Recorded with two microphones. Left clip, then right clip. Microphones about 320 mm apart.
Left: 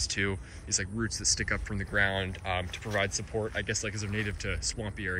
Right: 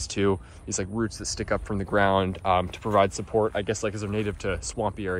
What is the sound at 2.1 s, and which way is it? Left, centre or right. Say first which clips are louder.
Speech: right 10 dB; centre.